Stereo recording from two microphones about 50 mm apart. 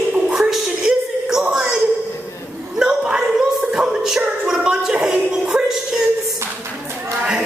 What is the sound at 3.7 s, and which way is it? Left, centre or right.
Music, centre.